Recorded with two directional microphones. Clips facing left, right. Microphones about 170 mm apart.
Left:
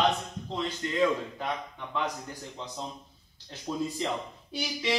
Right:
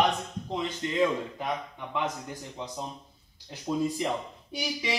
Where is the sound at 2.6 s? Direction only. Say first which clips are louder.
Right 1 dB; 15° right (ahead or behind).